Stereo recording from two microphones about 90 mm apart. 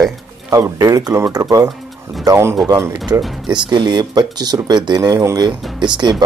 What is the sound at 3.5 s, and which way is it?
Speech, 55° right (ahead or behind).